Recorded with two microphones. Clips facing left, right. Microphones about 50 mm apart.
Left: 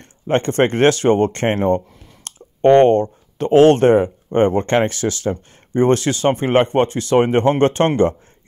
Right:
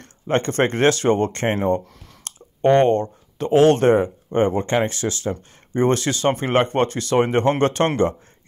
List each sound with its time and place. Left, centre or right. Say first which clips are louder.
0.5 s speech: left 4 dB; left
5.8 s speech: left 4 dB; left